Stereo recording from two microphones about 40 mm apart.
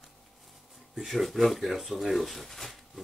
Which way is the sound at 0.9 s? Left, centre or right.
Centre.